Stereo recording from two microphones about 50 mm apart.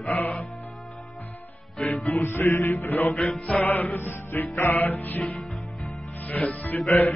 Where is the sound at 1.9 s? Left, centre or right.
Left.